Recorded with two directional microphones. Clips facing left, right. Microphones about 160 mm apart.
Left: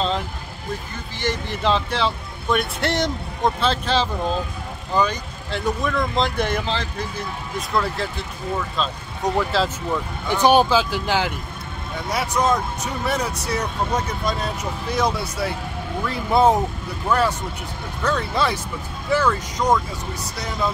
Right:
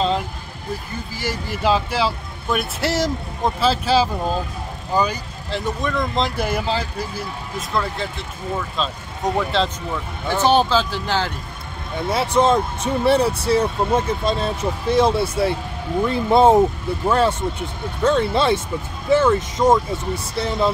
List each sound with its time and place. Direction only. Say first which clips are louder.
1.1 s speech: left 2 dB; 5° right (ahead or behind)
10.3 s speech: left 1 dB; 15° left (ahead or behind)
12.1 s speech: right 4 dB; 25° right (ahead or behind)